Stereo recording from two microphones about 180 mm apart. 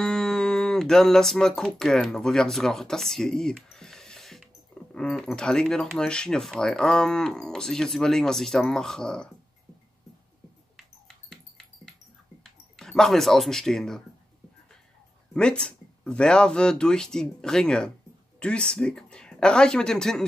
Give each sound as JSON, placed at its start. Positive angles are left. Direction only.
{"t": 0.0, "sound": "speech", "side_deg": 5}
{"t": 11.2, "sound": "dog", "side_deg": 5}
{"t": 12.7, "sound": "speech", "side_deg": 5}
{"t": 15.3, "sound": "speech", "side_deg": 5}